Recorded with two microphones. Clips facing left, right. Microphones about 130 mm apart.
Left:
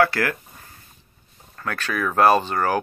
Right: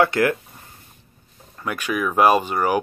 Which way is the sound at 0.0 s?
20° right (ahead or behind).